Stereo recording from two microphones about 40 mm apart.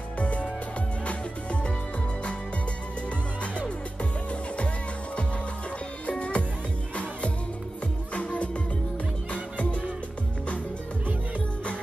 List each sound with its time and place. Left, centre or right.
0.2 s music: left
3.5 s music: left
6.0 s music: left